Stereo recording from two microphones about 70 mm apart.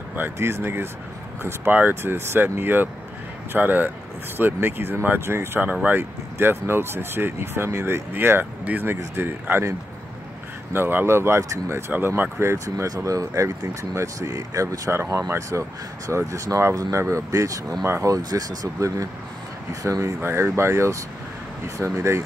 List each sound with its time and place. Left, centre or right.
0.1 s speech: right
6.3 s speech: right
9.1 s speech: right
20.2 s speech: right